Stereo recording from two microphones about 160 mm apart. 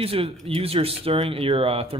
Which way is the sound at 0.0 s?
35° right (ahead or behind).